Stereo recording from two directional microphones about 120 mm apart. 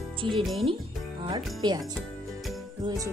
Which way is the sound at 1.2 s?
40° right (ahead or behind).